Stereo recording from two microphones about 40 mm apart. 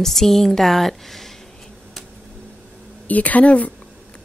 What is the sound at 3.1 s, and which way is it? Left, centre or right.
Speech, left.